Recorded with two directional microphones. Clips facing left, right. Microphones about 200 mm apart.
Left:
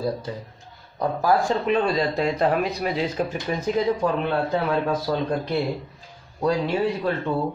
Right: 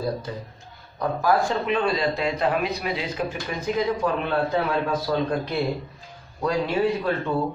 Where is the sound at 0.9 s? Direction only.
35° left (ahead or behind).